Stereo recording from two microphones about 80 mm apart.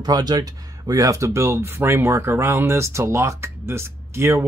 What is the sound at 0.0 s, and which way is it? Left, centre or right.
Speech, right.